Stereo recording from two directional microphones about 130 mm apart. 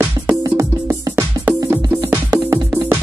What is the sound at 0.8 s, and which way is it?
Music, 15° right (ahead or behind).